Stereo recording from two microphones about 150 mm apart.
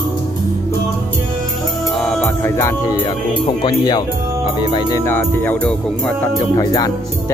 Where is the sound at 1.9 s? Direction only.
5° left (ahead or behind).